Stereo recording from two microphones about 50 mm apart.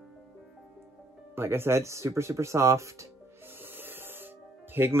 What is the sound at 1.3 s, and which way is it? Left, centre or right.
Speech, right.